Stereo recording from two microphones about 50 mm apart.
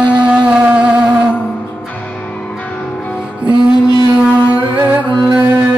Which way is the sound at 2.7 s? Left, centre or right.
Left.